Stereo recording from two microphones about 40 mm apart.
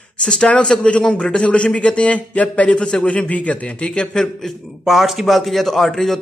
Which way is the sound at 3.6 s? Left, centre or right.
Left.